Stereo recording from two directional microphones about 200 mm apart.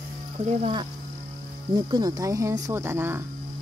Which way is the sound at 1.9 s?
20° right (ahead or behind).